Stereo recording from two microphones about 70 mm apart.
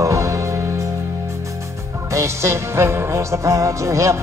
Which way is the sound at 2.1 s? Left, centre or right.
Right.